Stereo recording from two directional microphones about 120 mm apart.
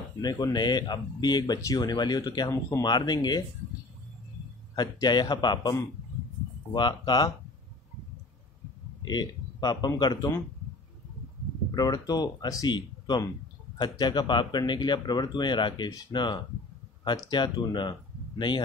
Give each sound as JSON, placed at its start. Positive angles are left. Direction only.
{"t": 0.2, "sound": "speech", "side_deg": 35}
{"t": 2.5, "sound": "speech", "side_deg": 25}
{"t": 2.9, "sound": "speech", "side_deg": 35}
{"t": 4.7, "sound": "speech", "side_deg": 35}
{"t": 9.0, "sound": "speech", "side_deg": 35}
{"t": 11.7, "sound": "speech", "side_deg": 35}